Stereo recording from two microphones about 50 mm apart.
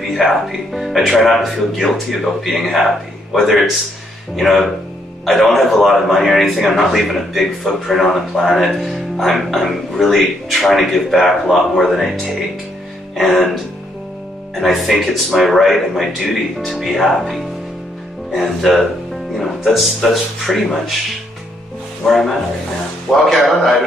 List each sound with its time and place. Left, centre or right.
0.1 s speech: centre
13.1 s speech: centre
14.5 s speech: centre
18.4 s speech: centre
22.0 s speech: centre